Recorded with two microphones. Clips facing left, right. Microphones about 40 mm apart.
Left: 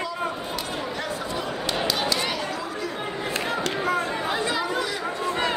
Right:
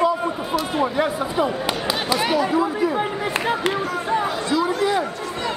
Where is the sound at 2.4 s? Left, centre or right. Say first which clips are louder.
Right 10 dB; right.